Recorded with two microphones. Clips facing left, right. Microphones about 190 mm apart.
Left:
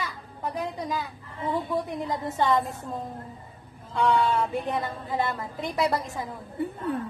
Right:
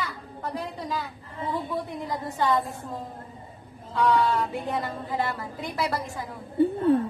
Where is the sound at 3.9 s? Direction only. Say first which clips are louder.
Even; 25° left (ahead or behind).